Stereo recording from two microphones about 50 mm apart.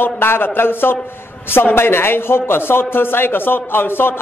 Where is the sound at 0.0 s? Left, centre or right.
Left.